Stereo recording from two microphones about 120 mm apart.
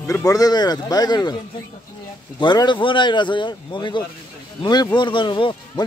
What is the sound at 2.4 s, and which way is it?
A man's voice, 40° left (ahead or behind).